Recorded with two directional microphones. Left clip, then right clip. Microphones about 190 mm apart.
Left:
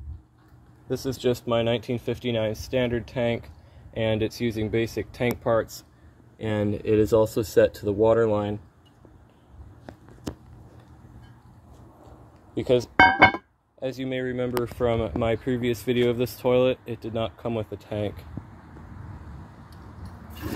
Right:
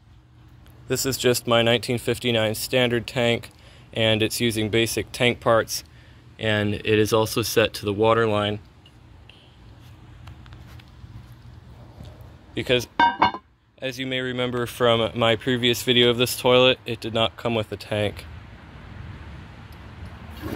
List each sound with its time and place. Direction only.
0.8 s speech: 5° right (ahead or behind)
12.5 s speech: 15° left (ahead or behind); by 18.2 s centre (ahead or behind)